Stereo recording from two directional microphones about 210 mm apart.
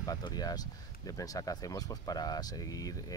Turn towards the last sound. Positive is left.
turn(degrees=15)  # may be behind; listen again after turning